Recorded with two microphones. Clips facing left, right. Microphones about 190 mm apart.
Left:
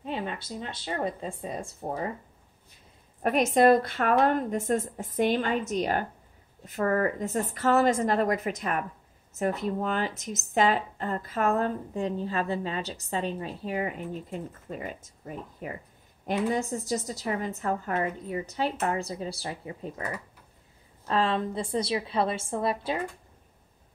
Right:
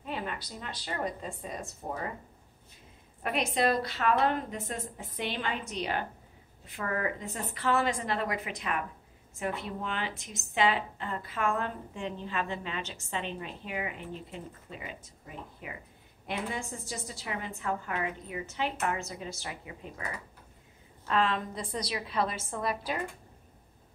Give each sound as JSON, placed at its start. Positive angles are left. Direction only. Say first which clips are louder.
{"t": 0.0, "sound": "a woman's voice", "louder": "left 3 dB", "side_deg": 30}
{"t": 3.2, "sound": "a woman's voice", "louder": "left 7 dB", "side_deg": 45}
{"t": 21.1, "sound": "a woman's voice", "louder": "left 3 dB", "side_deg": 30}